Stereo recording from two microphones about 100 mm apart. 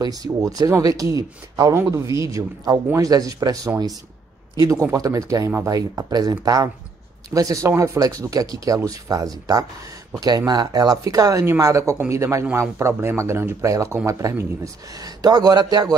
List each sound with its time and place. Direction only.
0.0 s speech: 40° right (ahead or behind)
15.0 s a man's voice: 40° right (ahead or behind)